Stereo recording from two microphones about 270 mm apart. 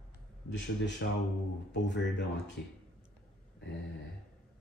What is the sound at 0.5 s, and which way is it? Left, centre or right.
Speech, left.